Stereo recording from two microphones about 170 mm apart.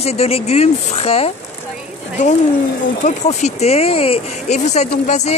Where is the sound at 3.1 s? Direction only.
40° left (ahead or behind).